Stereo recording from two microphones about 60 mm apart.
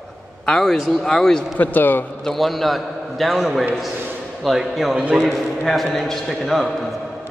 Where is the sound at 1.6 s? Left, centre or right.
Left.